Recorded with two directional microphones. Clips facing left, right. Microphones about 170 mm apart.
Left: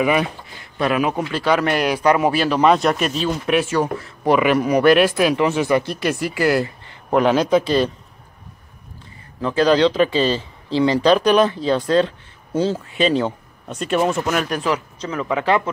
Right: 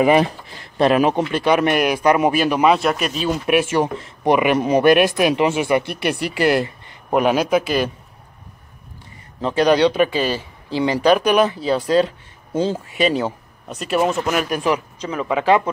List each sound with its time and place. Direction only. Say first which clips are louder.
0.0 s speech: right 4 dB; 35° right (ahead or behind)
1.3 s speech: right 2 dB; 20° right (ahead or behind)
2.7 s speech: left 1 dB; 5° right (ahead or behind)
3.2 s speech: right 1 dB; 15° right (ahead or behind)
9.4 s speech: even; 20° right (ahead or behind)